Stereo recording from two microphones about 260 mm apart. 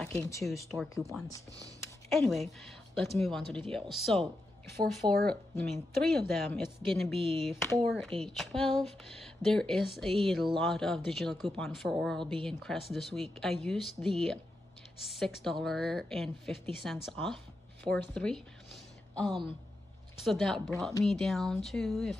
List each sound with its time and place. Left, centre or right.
0.0 s a woman's voice: centre
2.0 s a woman's voice: centre
5.0 s speech: right
5.3 s a woman's voice: centre
12.2 s speech: centre
12.4 s a woman's voice: centre